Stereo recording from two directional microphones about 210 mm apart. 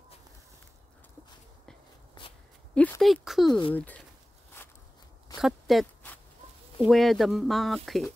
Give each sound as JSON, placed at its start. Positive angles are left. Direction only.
{"t": 2.7, "sound": "speech", "side_deg": 5}
{"t": 3.4, "sound": "speech", "side_deg": 20}
{"t": 3.7, "sound": "speech", "side_deg": 10}
{"t": 5.4, "sound": "a sound", "side_deg": 0}
{"t": 6.8, "sound": "speech", "side_deg": 0}